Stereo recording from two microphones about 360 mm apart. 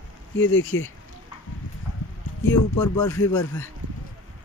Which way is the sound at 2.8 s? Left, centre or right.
Centre.